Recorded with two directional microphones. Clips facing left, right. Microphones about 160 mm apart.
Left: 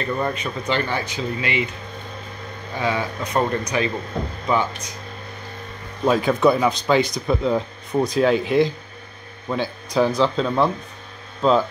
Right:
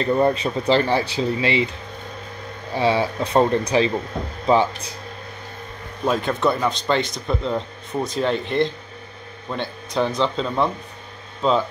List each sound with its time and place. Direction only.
0.0 s speech: 30° right (ahead or behind)
2.7 s speech: 30° right (ahead or behind)
6.0 s speech: 5° left (ahead or behind)